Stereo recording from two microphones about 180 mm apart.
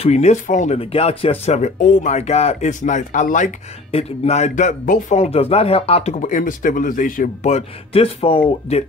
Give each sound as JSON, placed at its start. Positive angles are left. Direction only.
{"t": 0.0, "sound": "a man's voice", "side_deg": 35}